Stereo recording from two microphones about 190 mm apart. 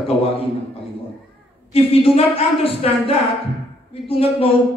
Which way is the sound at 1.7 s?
30° left (ahead or behind).